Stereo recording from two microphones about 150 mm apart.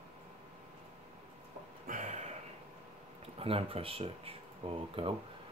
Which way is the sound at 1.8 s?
60° right (ahead or behind).